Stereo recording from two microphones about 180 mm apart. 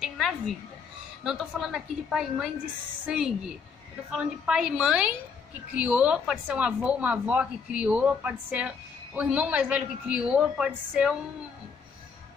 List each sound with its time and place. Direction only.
1.2 s a woman's voice: centre (ahead or behind)